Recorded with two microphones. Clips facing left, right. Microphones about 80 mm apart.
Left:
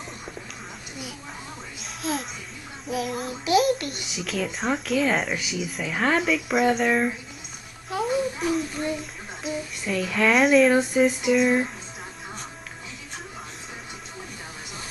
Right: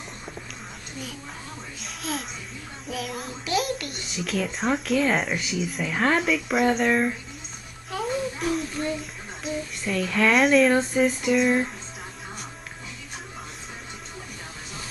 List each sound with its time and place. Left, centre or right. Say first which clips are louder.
2.0 s speech: left 3 dB; centre
8.0 s a sound: left 2 dB; centre
9.4 s speech: even; centre